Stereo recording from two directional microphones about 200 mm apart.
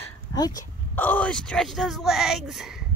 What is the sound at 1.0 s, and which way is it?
Speech, 10° left (ahead or behind).